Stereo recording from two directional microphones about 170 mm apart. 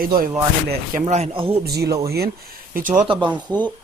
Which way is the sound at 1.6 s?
70° right (ahead or behind).